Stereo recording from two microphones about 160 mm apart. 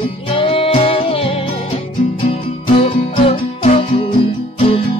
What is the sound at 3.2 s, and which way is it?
Music, 40° left (ahead or behind).